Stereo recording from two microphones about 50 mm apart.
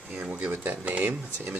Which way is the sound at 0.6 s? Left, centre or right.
Right.